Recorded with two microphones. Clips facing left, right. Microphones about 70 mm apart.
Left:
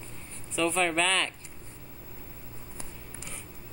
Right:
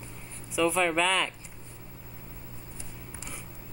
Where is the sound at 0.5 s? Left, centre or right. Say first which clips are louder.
Right 1 dB; centre.